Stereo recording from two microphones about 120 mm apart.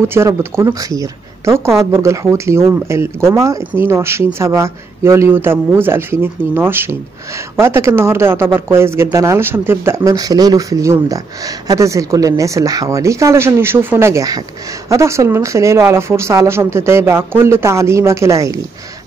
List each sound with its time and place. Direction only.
0.1 s speech: 20° right (ahead or behind)